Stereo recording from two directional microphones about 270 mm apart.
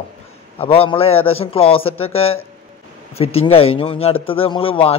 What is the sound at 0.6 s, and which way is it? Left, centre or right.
Speech, left.